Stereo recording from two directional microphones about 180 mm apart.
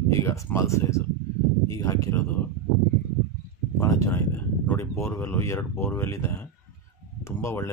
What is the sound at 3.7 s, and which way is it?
Speech, 15° left (ahead or behind).